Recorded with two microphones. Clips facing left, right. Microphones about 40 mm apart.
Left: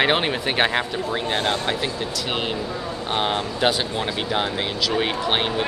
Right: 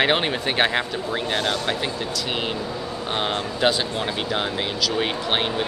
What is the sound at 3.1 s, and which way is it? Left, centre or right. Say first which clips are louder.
Speech: left 2 dB; centre.